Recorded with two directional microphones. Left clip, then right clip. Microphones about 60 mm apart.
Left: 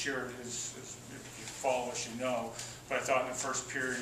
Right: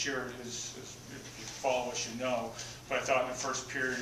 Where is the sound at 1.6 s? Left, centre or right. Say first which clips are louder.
Right 1 dB; centre.